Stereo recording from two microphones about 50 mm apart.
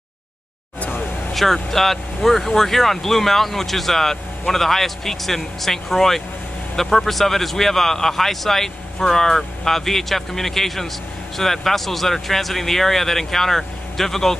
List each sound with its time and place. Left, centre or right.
0.7 s vehicle: left
1.3 s speech: centre